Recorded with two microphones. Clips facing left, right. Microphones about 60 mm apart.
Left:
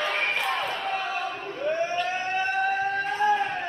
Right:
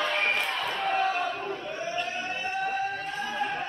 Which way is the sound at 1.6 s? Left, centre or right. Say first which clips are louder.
Left 6 dB; left.